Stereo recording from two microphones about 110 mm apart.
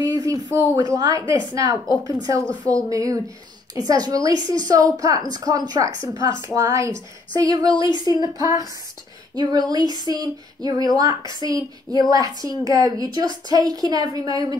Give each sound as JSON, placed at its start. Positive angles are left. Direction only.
{"t": 0.0, "sound": "a woman's voice", "side_deg": -35}
{"t": 2.4, "sound": "speech", "side_deg": 10}
{"t": 2.9, "sound": "a woman's voice", "side_deg": -30}
{"t": 6.5, "sound": "a woman's voice", "side_deg": -25}
{"t": 11.4, "sound": "speech", "side_deg": 40}
{"t": 11.9, "sound": "a woman's voice", "side_deg": -35}